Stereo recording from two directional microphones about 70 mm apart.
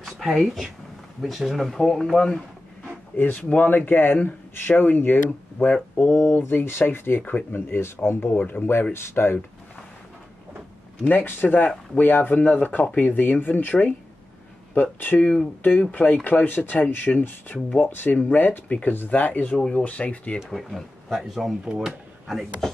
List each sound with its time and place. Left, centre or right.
0.0 s speech: centre
3.3 s speech: left
11.1 s speech: left
20.4 s speech: centre